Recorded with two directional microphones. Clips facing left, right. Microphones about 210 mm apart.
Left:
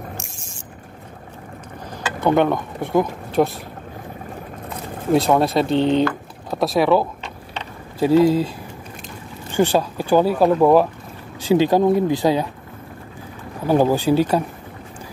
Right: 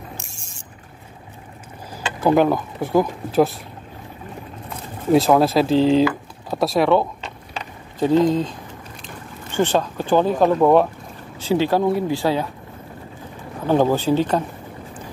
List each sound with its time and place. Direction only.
2.1 s speech: centre (ahead or behind)
5.1 s speech: centre (ahead or behind)
11.4 s speech: 15° left (ahead or behind)
13.7 s speech: 10° left (ahead or behind)